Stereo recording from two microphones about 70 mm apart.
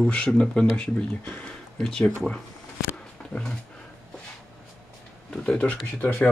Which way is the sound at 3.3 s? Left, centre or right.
Left.